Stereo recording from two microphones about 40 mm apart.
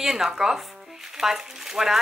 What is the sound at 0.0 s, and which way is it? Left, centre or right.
Speech, centre.